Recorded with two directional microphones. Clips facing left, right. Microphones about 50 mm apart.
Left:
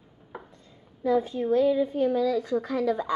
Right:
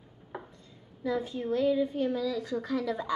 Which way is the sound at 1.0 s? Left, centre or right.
Left.